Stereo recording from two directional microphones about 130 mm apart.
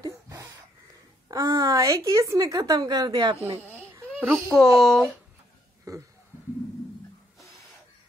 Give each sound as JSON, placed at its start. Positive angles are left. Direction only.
{"t": 0.0, "sound": "wheeze", "side_deg": -25}
{"t": 1.3, "sound": "a woman's voice", "side_deg": -30}
{"t": 3.6, "sound": "baby cry", "side_deg": -10}
{"t": 4.5, "sound": "speech", "side_deg": 0}
{"t": 5.9, "sound": "speech", "side_deg": -25}